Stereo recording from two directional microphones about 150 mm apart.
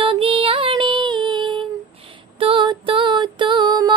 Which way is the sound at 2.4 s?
35° right (ahead or behind).